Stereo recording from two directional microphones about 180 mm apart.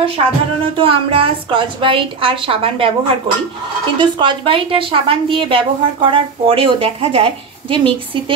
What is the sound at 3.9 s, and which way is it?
A woman's voice, 25° right (ahead or behind).